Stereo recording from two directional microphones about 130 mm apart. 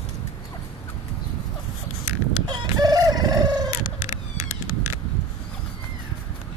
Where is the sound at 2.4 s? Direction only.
35° right (ahead or behind).